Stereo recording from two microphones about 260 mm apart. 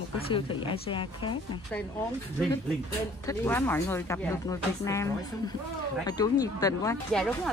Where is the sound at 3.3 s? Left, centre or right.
Centre.